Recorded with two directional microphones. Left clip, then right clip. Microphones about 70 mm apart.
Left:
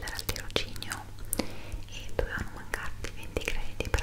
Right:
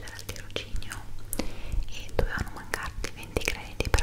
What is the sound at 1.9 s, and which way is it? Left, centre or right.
Whispering, right.